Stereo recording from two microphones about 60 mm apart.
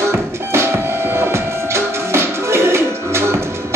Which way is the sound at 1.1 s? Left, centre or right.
Right.